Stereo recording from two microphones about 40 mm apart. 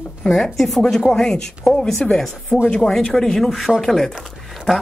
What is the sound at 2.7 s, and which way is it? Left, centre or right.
Speech, centre.